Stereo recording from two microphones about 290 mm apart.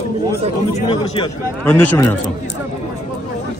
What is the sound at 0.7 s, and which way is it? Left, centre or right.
Speech, centre.